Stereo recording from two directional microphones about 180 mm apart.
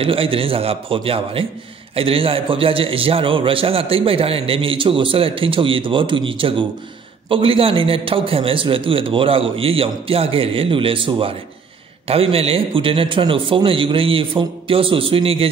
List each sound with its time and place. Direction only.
0.0 s a man's voice: 30° right (ahead or behind)